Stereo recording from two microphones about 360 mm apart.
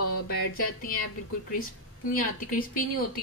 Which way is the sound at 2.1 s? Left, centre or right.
Left.